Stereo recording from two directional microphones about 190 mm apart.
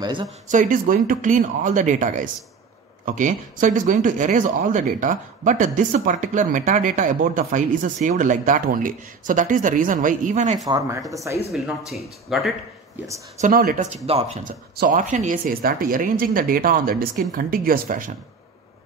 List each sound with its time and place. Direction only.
0.0 s speech: 25° right (ahead or behind)
0.5 s speech: 45° right (ahead or behind)
10.6 s speech: 20° right (ahead or behind)
11.5 s speech: centre (ahead or behind)
13.4 s speech: 50° right (ahead or behind)